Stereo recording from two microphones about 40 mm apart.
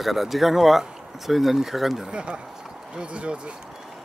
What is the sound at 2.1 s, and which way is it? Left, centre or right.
Speech, right.